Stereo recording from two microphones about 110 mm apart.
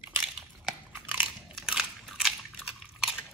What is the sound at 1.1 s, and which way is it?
Biting, 15° right (ahead or behind).